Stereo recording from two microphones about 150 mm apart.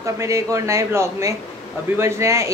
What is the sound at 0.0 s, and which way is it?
A woman's voice, 20° right (ahead or behind).